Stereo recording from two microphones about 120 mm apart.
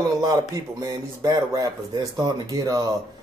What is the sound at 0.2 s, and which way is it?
Speech, 30° right (ahead or behind).